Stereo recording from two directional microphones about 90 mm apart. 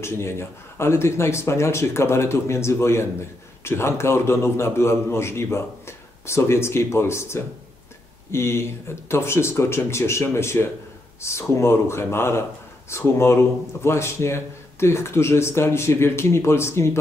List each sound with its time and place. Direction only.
0.0 s a man's voice: 30° left (ahead or behind)